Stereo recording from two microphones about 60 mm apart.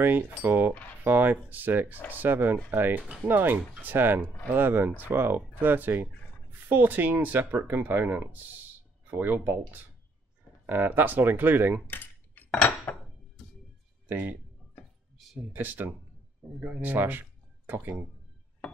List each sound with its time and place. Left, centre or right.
0.4 s speech: right
12.4 s cutlery: centre
14.0 s speech: right
15.5 s speech: right
16.5 s speech: centre
16.8 s speech: right